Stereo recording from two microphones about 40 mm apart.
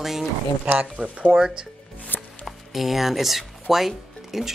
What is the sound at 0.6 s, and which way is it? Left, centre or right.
Speech, right.